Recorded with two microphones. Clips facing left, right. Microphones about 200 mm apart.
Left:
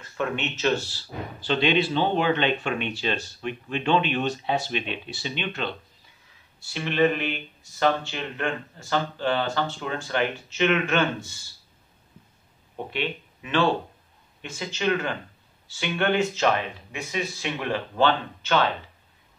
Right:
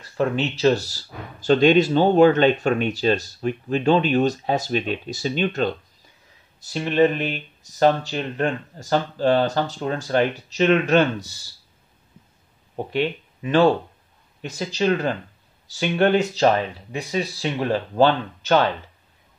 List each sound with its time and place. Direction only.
0.0 s speech: 35° right (ahead or behind)
12.7 s speech: 40° right (ahead or behind)